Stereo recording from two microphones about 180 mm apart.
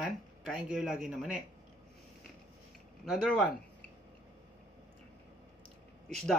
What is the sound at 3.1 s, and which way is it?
Speech, centre (ahead or behind).